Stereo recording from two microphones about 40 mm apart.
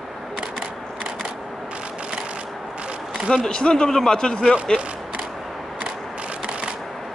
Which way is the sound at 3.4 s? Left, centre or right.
Left.